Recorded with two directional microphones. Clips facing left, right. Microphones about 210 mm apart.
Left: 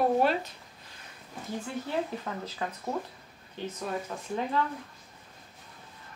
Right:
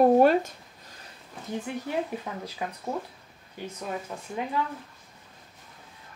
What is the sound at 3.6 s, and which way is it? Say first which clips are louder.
Speech: even; 10° right (ahead or behind).